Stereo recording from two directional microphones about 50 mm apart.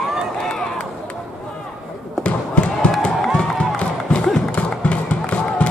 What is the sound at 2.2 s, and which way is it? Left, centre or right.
Basketball bounce, left.